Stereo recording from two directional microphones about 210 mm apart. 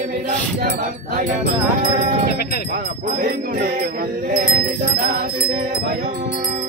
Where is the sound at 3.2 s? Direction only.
45° right (ahead or behind).